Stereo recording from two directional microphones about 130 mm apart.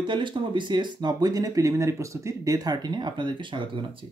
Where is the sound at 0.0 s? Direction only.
40° right (ahead or behind).